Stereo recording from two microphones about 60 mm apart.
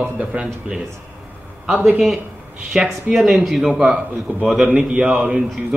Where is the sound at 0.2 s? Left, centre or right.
Centre.